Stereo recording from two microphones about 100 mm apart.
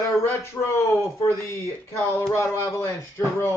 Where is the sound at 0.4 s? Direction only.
25° left (ahead or behind).